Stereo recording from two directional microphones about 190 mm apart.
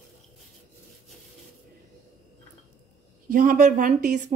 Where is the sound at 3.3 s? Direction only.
45° right (ahead or behind).